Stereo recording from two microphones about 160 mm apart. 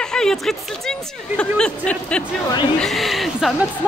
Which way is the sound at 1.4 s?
5° left (ahead or behind).